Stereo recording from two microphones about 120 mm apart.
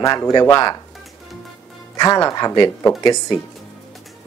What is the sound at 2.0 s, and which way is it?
Speech, 30° left (ahead or behind).